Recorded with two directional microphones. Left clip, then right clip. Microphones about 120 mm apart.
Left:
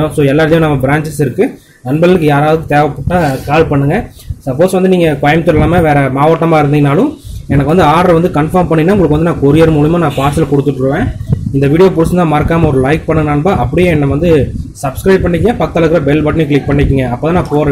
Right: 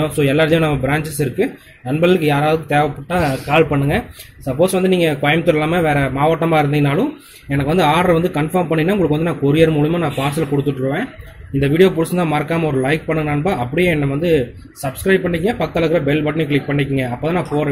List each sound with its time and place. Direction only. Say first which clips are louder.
0.0 s speech: left 5 dB; 5° right (ahead or behind)